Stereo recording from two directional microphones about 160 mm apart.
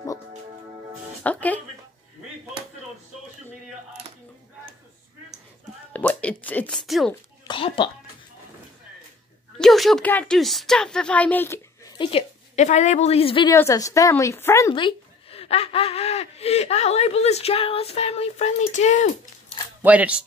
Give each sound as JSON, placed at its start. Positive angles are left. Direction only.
{"t": 1.2, "sound": "speech", "side_deg": 10}
{"t": 5.9, "sound": "speech", "side_deg": 10}
{"t": 7.4, "sound": "speech", "side_deg": 30}
{"t": 9.6, "sound": "a woman's voice", "side_deg": 0}
{"t": 12.0, "sound": "a woman's voice", "side_deg": 35}
{"t": 13.5, "sound": "a woman's voice", "side_deg": 20}
{"t": 14.7, "sound": "speech", "side_deg": 30}
{"t": 19.8, "sound": "speech", "side_deg": -10}